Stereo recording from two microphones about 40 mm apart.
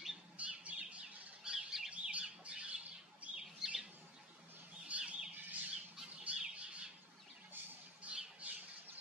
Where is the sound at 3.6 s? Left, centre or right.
Centre.